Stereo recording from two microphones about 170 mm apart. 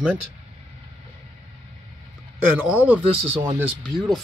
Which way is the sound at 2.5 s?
10° right (ahead or behind).